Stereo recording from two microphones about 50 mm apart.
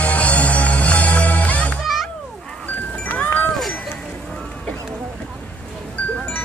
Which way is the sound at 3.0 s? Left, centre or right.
Left.